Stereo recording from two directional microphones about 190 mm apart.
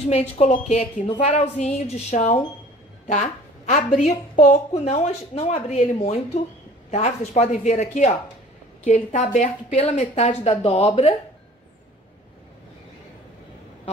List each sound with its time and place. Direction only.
0.1 s a woman's voice: 35° left (ahead or behind)